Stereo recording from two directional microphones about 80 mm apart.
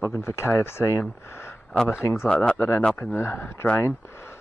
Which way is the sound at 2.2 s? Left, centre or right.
Centre.